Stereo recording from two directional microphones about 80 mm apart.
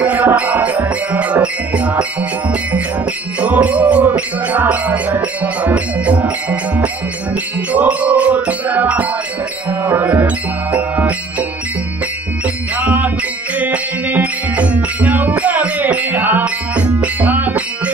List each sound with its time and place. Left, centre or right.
0.0 s music: centre
3.3 s music: centre
12.7 s music: centre